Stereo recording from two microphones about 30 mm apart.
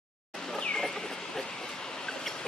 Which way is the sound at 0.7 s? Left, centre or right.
Centre.